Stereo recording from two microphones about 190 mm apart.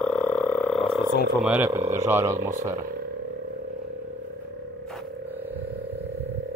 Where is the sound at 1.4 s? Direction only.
10° right (ahead or behind).